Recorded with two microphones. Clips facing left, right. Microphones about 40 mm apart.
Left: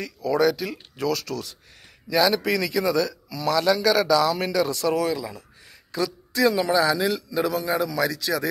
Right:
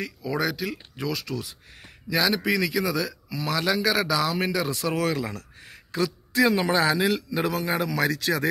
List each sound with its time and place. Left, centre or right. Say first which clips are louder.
0.0 s a man's voice: left 6 dB; centre
3.3 s a man's voice: left 4 dB; right
4.9 s speech: left 1 dB; right
5.7 s a man's voice: even; right